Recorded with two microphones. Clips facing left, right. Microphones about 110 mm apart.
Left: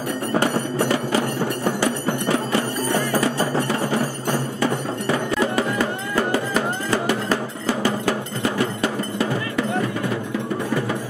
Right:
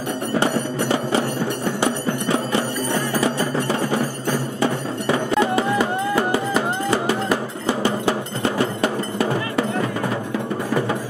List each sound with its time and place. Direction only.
0.4 s music: 25° right (ahead or behind)
5.4 s music: 25° right (ahead or behind)